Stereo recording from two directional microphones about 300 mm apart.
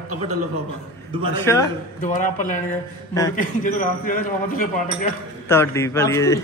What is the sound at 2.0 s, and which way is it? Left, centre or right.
A man's voice, left.